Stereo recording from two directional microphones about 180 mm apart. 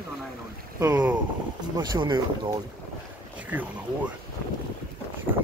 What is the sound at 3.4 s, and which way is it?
Speech, 10° right (ahead or behind).